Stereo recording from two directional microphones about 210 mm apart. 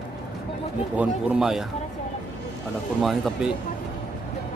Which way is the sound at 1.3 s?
Centre (ahead or behind).